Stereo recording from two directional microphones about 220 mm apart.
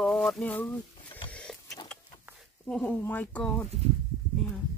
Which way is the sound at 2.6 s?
5° left (ahead or behind).